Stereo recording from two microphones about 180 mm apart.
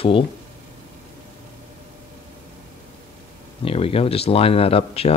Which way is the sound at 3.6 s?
30° left (ahead or behind).